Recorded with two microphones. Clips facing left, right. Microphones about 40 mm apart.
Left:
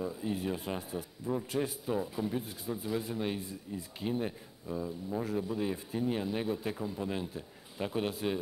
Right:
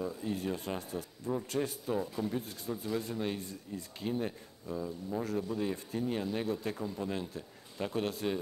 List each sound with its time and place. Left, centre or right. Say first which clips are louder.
0.0 s speech: left 1 dB; centre